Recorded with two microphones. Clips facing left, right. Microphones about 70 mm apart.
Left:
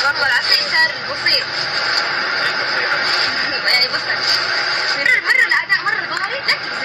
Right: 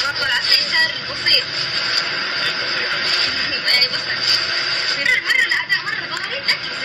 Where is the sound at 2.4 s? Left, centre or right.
Left.